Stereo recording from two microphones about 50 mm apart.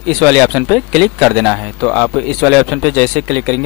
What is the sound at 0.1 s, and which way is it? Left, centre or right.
Speech, centre.